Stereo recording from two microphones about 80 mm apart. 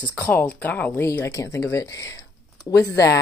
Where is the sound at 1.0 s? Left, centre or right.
Left.